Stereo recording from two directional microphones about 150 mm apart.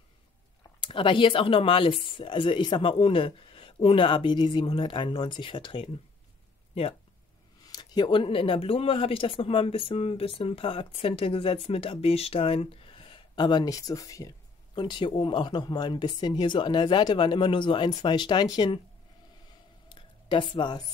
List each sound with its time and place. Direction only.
0.8 s speech: 35° left (ahead or behind)
7.6 s speech: 25° left (ahead or behind)
19.9 s a sound: 35° left (ahead or behind)